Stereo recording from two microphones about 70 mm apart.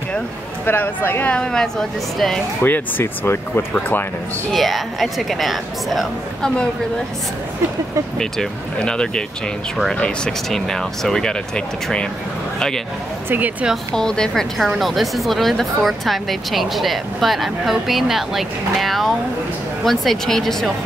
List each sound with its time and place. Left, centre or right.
0.7 s speech: left
1.3 s speech: centre
2.6 s speech: left
4.5 s a woman's voice: centre
8.2 s speech: centre
10.5 s speech: centre
13.3 s speech: right
13.9 s speech: centre
14.6 s a woman's voice: centre